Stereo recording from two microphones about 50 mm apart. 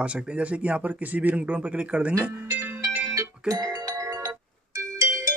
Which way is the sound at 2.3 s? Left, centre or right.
Right.